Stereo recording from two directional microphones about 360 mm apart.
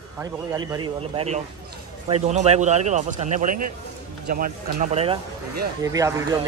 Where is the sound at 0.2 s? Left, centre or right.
Centre.